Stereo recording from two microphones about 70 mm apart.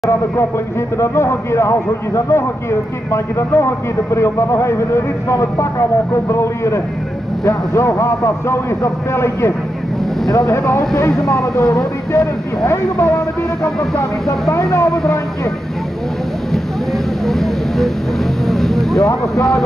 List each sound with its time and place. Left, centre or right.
0.9 s a man's voice: left
14.5 s speech: left
17.3 s vehicle: centre